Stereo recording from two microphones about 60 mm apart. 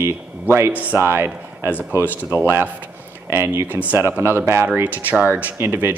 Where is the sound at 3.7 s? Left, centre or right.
Right.